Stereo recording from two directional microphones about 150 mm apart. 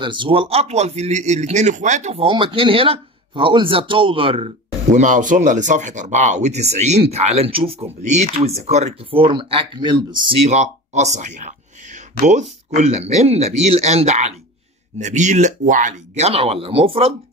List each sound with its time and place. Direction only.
0.0 s speech: 30° right (ahead or behind); by 2.2 s 50° right (ahead or behind)
2.2 s speech: 35° right (ahead or behind)